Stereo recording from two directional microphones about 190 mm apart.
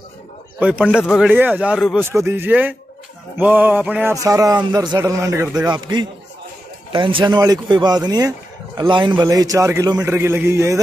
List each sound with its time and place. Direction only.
0.6 s a man's voice: 5° right (ahead or behind)
2.0 s a man's voice: 10° right (ahead or behind)
4.1 s a man's voice: 20° right (ahead or behind)